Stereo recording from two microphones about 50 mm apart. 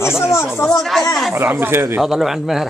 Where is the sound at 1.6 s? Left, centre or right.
Right.